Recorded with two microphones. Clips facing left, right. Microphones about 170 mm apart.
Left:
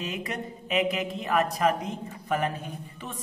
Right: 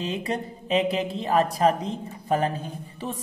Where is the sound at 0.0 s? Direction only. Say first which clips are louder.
Right 5 dB; 30° right (ahead or behind).